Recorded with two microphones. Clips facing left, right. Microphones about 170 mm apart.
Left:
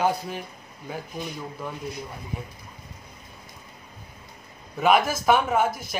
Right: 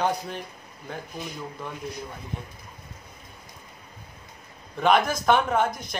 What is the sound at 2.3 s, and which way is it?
Speech, 5° left (ahead or behind).